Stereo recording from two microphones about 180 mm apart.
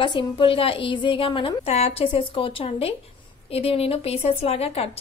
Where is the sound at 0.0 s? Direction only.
25° left (ahead or behind).